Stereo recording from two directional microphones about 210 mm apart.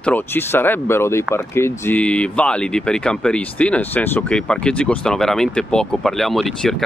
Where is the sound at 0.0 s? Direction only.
10° left (ahead or behind).